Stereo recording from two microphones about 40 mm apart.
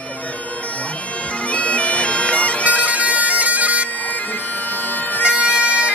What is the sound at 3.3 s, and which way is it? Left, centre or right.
Bagpipes, right.